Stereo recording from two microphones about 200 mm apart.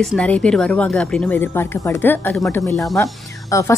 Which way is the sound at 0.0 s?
5° left (ahead or behind).